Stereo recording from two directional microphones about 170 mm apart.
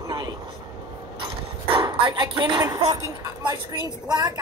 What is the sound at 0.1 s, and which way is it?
Vehicle, 25° right (ahead or behind).